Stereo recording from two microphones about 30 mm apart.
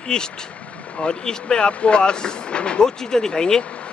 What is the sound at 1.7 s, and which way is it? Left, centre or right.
Speech, left.